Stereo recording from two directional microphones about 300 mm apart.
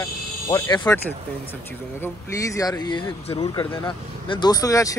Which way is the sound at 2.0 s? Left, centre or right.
Centre.